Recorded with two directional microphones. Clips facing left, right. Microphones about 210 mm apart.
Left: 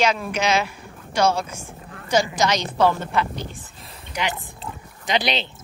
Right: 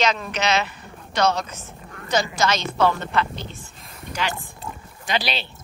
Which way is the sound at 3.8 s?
25° left (ahead or behind).